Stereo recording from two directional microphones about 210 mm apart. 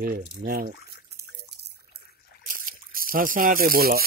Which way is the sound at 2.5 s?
40° right (ahead or behind).